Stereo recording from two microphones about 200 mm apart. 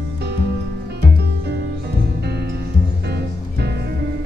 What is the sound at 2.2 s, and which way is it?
Music, 55° right (ahead or behind).